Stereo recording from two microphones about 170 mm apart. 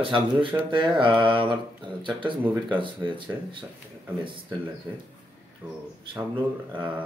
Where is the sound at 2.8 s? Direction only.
30° right (ahead or behind).